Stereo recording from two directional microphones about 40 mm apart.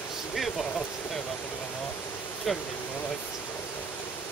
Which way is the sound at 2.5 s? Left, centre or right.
Centre.